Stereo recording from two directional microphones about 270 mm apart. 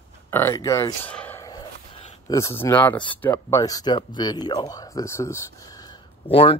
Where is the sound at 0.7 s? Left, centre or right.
Centre.